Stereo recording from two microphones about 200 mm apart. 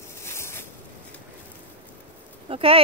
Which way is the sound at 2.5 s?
30° right (ahead or behind).